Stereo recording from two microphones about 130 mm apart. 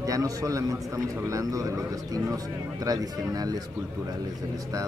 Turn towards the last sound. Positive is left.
turn(degrees=-30)  # may be behind; listen again after turning